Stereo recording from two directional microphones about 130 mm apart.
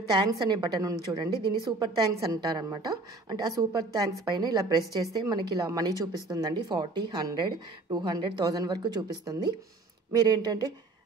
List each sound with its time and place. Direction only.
0.3 s speech: 30° right (ahead or behind)